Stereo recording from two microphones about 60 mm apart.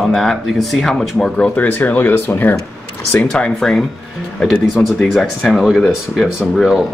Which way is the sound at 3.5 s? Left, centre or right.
Centre.